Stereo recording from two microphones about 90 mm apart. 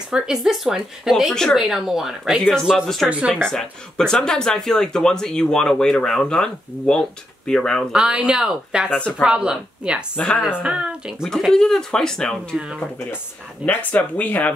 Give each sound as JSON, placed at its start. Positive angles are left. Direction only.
{"t": 0.1, "sound": "speech", "side_deg": -5}
{"t": 3.1, "sound": "speech", "side_deg": -15}
{"t": 3.4, "sound": "speech", "side_deg": 5}
{"t": 7.9, "sound": "speech", "side_deg": -10}
{"t": 10.1, "sound": "speech", "side_deg": 10}
{"t": 10.6, "sound": "speech", "side_deg": -10}
{"t": 11.2, "sound": "speech", "side_deg": 5}
{"t": 13.6, "sound": "speech", "side_deg": -10}
{"t": 13.9, "sound": "speech", "side_deg": 15}